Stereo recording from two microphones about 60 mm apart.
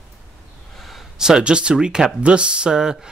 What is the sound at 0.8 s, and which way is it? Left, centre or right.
Speech, centre.